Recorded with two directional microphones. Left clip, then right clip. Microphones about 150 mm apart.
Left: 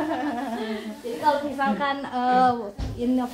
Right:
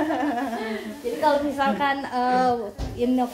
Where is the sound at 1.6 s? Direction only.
15° right (ahead or behind).